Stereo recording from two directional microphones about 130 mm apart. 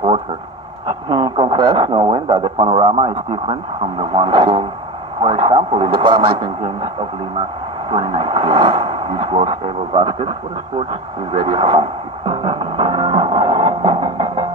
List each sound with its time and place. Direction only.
0.8 s speech: 35° right (ahead or behind)
2.4 s speech: 40° right (ahead or behind)
7.9 s speech: 40° right (ahead or behind)